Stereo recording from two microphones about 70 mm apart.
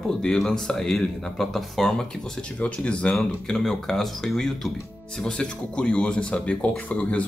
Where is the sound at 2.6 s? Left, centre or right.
Centre.